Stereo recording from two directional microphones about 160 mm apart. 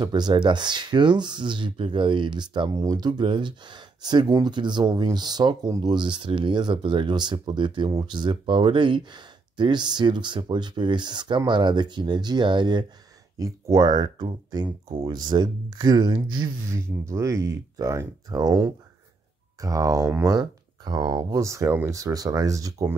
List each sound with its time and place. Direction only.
0.0 s speech: 25° right (ahead or behind)